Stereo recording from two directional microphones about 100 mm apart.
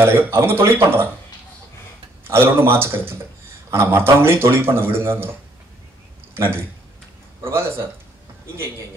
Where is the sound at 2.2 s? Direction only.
25° right (ahead or behind).